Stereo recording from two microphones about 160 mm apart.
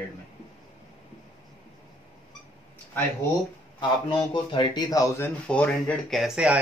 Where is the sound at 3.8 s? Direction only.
30° left (ahead or behind); by 6.5 s 5° right (ahead or behind).